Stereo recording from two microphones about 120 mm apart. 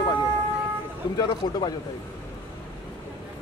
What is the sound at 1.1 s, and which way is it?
Speech, 40° left (ahead or behind).